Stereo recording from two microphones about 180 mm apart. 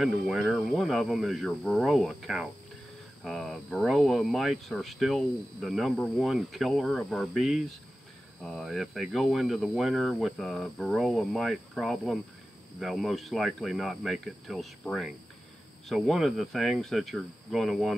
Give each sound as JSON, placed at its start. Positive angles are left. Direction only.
{"t": 0.0, "sound": "speech", "side_deg": 0}